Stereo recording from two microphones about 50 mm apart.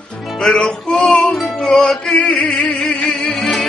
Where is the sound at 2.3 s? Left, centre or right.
Centre.